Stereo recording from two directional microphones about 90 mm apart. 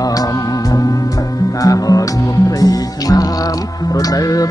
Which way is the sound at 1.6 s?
40° left (ahead or behind).